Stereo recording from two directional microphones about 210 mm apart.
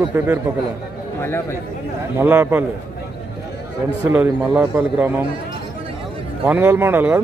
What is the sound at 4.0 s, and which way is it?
A man's voice, 10° right (ahead or behind).